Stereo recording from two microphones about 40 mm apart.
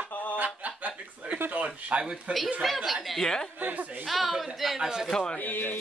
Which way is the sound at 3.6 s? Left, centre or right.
Right.